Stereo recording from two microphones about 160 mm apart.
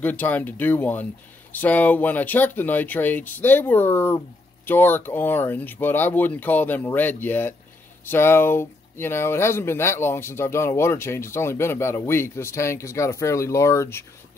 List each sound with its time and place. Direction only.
0.0 s speech: 10° left (ahead or behind)